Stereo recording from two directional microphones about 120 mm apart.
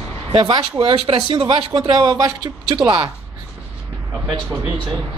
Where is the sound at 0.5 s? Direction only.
50° right (ahead or behind).